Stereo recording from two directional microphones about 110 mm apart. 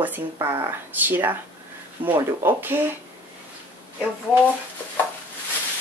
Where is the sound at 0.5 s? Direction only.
20° right (ahead or behind).